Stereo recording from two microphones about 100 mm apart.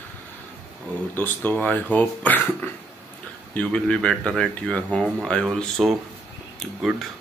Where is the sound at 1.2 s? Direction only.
15° left (ahead or behind).